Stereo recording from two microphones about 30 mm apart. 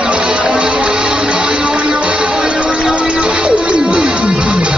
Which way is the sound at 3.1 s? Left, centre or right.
Right.